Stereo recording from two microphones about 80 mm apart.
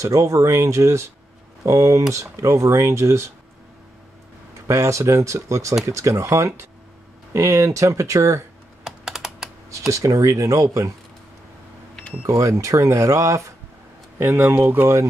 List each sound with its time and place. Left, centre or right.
0.0 s speech: right
4.6 s speech: right
8.8 s computer keyboard: centre
9.7 s speech: right
12.3 s speech: right